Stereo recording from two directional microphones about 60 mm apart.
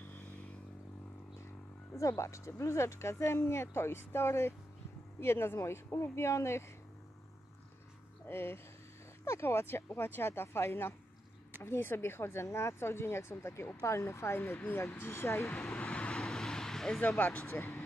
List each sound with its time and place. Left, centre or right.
2.0 s speech: left
8.3 s speech: left
15.8 s vehicle: centre
16.2 s vehicle: centre
17.2 s speech: left
17.5 s speech: left